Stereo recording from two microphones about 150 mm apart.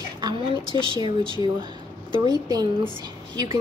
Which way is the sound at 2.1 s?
25° right (ahead or behind).